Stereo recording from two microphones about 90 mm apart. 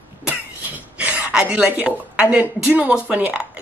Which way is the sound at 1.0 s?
15° right (ahead or behind).